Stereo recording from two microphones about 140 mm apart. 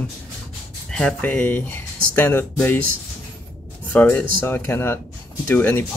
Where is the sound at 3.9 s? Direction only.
15° left (ahead or behind).